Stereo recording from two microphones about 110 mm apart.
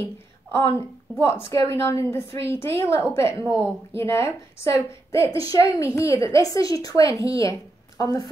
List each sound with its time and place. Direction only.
0.0 s a woman's voice: 25° left (ahead or behind)